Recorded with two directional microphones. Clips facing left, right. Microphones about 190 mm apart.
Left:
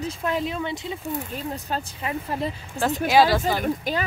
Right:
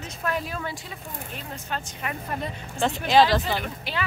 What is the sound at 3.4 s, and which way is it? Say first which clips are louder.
Speech: left 5 dB; 45° left (ahead or behind).